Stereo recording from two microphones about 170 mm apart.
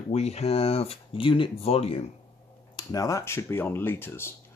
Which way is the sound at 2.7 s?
20° left (ahead or behind).